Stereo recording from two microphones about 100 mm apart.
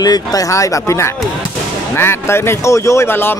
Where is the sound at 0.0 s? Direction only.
40° left (ahead or behind).